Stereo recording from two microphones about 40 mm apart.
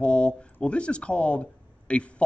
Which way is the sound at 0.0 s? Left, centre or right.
Left.